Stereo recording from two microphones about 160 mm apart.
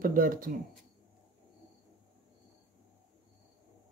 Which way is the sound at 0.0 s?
60° right (ahead or behind).